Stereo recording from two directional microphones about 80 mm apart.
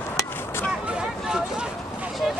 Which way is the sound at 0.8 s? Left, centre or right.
Centre.